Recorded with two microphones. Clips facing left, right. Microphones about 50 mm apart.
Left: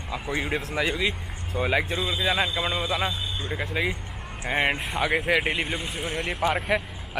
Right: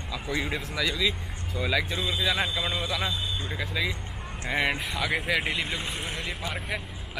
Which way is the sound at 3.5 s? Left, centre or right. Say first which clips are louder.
Left 4 dB; left.